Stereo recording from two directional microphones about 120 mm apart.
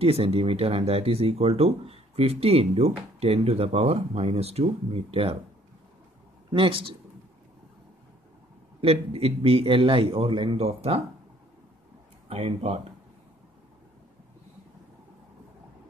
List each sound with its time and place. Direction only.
0.0 s speech: 55° right (ahead or behind)
6.5 s a man's voice: 50° right (ahead or behind)
8.8 s a man's voice: 55° right (ahead or behind)
12.3 s speech: 55° right (ahead or behind)